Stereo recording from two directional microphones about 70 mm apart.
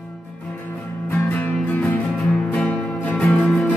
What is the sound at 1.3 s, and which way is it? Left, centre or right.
Music, left.